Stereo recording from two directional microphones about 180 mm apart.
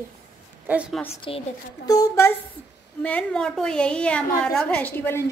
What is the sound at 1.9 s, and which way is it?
Speech, 20° left (ahead or behind).